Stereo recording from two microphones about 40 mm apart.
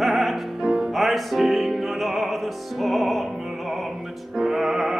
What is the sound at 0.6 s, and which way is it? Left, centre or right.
Music, centre.